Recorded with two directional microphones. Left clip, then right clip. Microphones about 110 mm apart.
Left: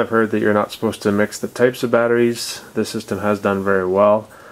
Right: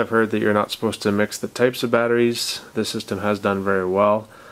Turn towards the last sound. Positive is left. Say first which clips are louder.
# left 4 dB
turn(degrees=-25)  # may be behind; listen again after turning